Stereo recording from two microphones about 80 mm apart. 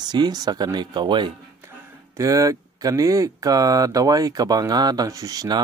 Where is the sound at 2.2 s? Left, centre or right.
Right.